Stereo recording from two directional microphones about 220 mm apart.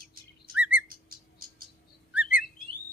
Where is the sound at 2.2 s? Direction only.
40° left (ahead or behind).